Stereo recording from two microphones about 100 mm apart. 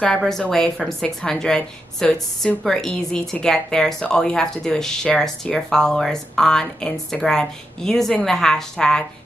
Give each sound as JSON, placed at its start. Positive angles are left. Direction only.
{"t": 0.2, "sound": "a woman's voice", "side_deg": 5}